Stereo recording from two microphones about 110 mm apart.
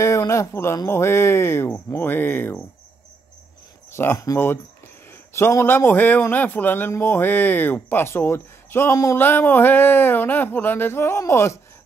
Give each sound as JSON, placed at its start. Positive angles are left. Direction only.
{"t": 0.0, "sound": "a sound", "side_deg": 25}
{"t": 0.8, "sound": "a man's voice", "side_deg": 25}
{"t": 3.9, "sound": "a man's voice", "side_deg": 20}